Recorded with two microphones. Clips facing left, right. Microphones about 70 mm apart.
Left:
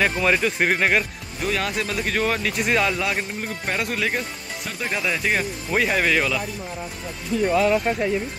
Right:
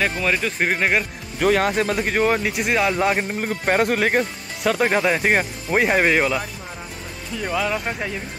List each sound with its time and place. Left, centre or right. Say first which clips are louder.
0.0 s speech: left 1 dB; centre
1.4 s speech: right 7 dB; right
2.0 s speech: right 2 dB; right
2.3 s speech: right 1 dB; centre
3.0 s speech: right 5 dB; right
5.7 s speech: right 3 dB; right